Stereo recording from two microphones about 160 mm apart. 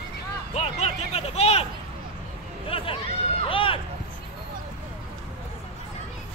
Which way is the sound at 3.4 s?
35° left (ahead or behind).